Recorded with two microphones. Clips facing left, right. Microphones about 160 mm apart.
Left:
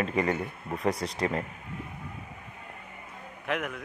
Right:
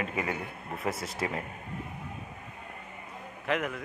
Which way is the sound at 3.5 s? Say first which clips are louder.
Right 1 dB; centre (ahead or behind).